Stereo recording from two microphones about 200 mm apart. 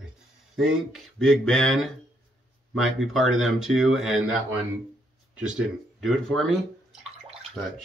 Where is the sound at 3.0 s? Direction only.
Centre (ahead or behind).